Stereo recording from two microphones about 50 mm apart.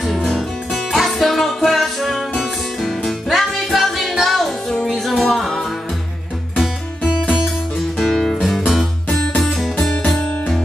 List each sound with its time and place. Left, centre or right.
0.0 s music: centre
8.0 s music: centre